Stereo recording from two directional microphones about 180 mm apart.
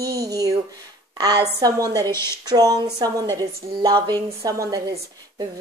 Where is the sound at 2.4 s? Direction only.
20° right (ahead or behind).